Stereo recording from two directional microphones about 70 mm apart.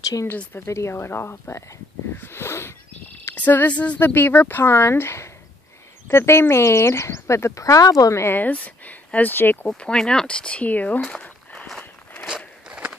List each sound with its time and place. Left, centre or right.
0.0 s speech: left
0.7 s speech: left
2.1 s a sound: left
3.3 s speech: left
8.4 s speech: left
9.7 s speech: centre
11.8 s walk: left
12.6 s a sound: centre